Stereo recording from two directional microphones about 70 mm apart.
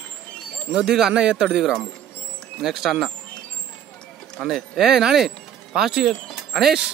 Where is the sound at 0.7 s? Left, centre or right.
Centre.